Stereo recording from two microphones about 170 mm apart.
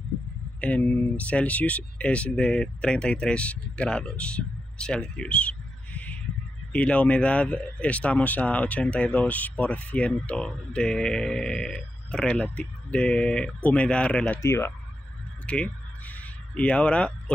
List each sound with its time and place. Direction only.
0.6 s speech: 5° left (ahead or behind)
15.4 s crow: 5° left (ahead or behind)